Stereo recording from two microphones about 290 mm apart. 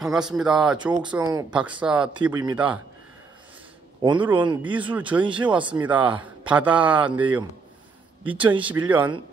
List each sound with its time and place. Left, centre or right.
0.0 s speech: centre
4.0 s speech: centre
5.9 s speech: centre
8.2 s speech: centre
8.8 s speech: centre